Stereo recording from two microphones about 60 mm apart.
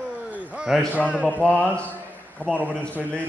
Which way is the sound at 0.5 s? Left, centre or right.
Centre.